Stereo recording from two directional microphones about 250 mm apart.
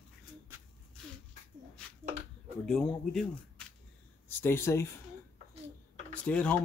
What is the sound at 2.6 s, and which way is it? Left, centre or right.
Speech, centre.